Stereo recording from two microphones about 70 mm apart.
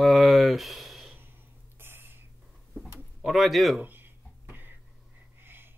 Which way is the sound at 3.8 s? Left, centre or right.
Right.